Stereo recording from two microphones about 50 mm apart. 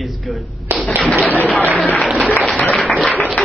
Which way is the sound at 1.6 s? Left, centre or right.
Right.